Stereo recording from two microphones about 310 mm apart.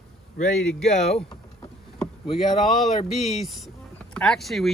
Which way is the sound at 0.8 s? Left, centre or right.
Left.